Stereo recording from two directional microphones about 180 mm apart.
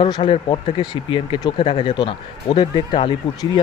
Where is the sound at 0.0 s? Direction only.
30° left (ahead or behind).